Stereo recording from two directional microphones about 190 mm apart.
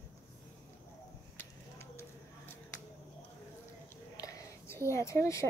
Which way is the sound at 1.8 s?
15° left (ahead or behind).